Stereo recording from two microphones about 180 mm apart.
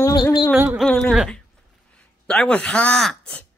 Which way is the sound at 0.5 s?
10° right (ahead or behind).